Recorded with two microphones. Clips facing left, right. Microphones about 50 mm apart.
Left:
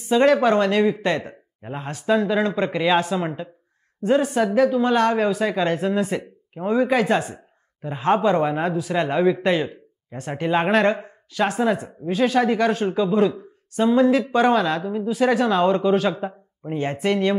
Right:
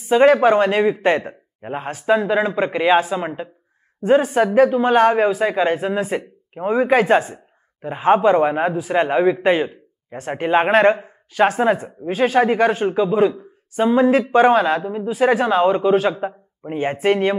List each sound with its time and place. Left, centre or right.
0.1 s speech: right
4.0 s speech: right
11.5 s speech: right